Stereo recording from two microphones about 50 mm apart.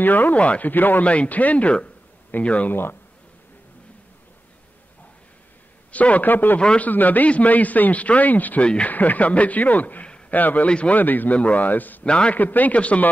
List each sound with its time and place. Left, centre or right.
0.0 s a man's voice: left
1.0 s speech: left
2.7 s speech: left
5.9 s a man's voice: left
8.6 s speech: left
8.9 s a man's voice: left
11.0 s a man's voice: left
12.0 s speech: left
12.4 s a man's voice: left